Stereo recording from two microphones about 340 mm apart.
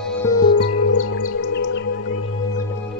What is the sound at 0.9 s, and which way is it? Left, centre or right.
Music, left.